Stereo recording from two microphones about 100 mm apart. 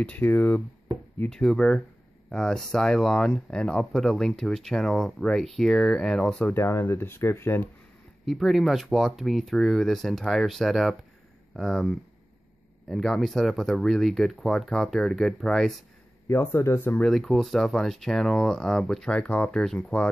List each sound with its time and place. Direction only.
0.0 s speech: 15° left (ahead or behind)
1.3 s speech: 5° left (ahead or behind)
6.4 s speech: 25° left (ahead or behind)
8.3 s speech: centre (ahead or behind)
16.3 s speech: 25° left (ahead or behind)
17.0 s speech: centre (ahead or behind)